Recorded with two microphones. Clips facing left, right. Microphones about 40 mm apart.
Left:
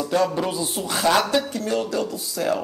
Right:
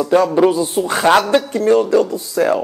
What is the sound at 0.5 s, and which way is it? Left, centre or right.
Speech, centre.